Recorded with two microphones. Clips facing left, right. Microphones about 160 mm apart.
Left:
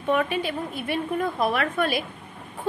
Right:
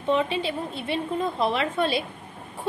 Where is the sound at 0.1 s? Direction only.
25° right (ahead or behind).